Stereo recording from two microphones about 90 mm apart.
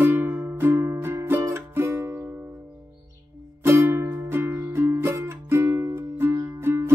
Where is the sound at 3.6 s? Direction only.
30° right (ahead or behind).